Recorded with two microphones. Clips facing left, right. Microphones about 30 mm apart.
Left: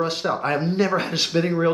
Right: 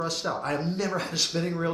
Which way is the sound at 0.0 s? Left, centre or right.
Left.